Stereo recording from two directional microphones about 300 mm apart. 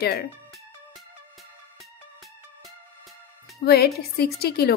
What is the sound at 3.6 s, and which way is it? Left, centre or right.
A woman's voice, left.